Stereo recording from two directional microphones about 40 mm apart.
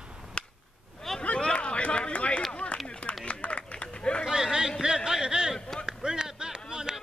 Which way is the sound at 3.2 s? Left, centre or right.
Left.